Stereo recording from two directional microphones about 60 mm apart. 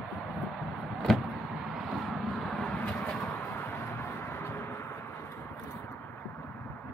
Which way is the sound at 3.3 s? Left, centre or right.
Left.